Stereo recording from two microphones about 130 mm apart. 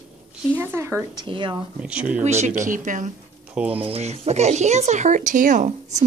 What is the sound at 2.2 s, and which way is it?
Speech, 60° right (ahead or behind).